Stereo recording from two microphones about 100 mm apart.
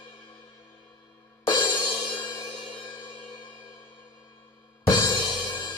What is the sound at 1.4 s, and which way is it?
Music, 45° left (ahead or behind).